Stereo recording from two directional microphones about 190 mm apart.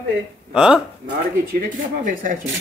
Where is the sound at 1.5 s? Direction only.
45° right (ahead or behind).